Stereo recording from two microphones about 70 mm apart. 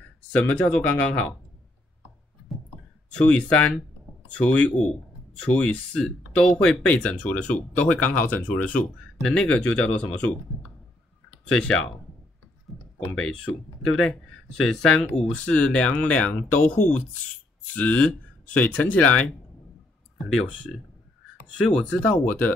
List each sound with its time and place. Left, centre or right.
0.3 s speech: left
3.1 s speech: centre
11.4 s speech: centre
12.7 s clicking: centre
13.1 s speech: centre